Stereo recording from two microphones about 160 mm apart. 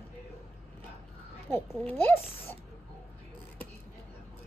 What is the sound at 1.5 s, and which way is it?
Speech, 10° left (ahead or behind).